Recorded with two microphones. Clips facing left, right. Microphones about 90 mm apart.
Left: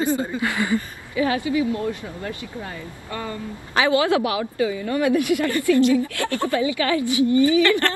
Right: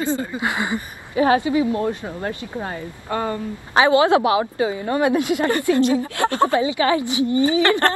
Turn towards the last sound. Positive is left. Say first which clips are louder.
# even
turn(degrees=-25)  # may be behind; listen again after turning